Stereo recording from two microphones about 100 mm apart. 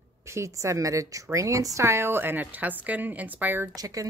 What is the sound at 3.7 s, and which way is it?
Speech, 35° right (ahead or behind).